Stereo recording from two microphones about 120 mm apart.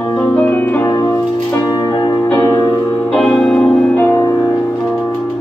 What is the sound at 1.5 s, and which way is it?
Music, 35° left (ahead or behind).